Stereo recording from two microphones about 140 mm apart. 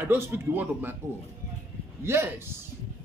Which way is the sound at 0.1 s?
15° right (ahead or behind).